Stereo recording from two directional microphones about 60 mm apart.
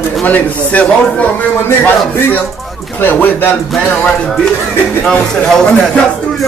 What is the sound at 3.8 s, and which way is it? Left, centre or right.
Speech, centre.